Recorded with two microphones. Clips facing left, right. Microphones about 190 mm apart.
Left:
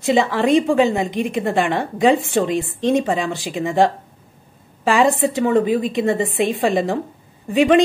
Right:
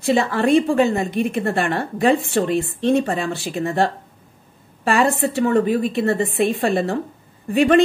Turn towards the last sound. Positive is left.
turn(degrees=10)  # may be behind; listen again after turning